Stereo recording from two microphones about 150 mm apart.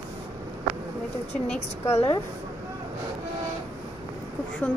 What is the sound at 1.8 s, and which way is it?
Speech, 20° left (ahead or behind).